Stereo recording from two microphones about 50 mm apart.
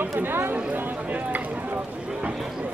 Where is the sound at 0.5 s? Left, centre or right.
Right.